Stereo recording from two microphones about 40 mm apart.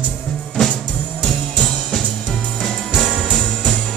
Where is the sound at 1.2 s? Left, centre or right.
Left.